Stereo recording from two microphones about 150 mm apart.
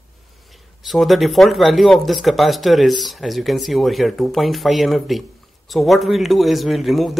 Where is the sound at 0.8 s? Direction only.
Centre (ahead or behind).